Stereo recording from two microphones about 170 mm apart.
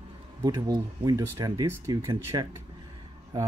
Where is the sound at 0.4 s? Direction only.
20° right (ahead or behind).